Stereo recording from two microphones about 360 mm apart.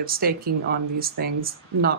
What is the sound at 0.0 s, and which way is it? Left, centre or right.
Speech, right.